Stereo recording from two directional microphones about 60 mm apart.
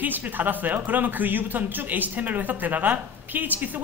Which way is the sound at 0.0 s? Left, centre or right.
Right.